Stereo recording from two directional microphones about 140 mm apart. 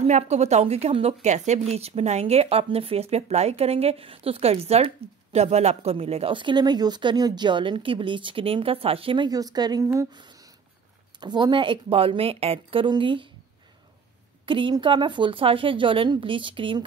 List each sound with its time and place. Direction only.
0.0 s a woman's voice: 50° right (ahead or behind); by 13.3 s 35° right (ahead or behind)
14.4 s speech: 35° right (ahead or behind)